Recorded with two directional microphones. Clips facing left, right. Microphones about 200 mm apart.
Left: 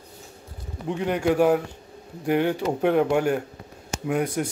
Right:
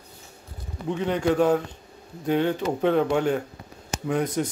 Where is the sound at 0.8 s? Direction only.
10° left (ahead or behind).